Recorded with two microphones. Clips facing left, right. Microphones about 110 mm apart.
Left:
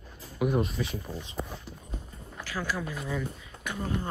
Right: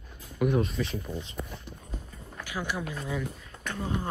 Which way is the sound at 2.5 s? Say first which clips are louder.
Even; 20° right (ahead or behind).